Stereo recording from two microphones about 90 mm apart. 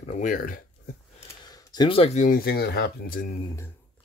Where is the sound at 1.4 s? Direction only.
50° left (ahead or behind).